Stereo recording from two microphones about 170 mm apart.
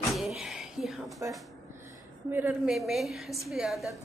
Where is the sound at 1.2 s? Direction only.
15° right (ahead or behind); by 4.0 s centre (ahead or behind).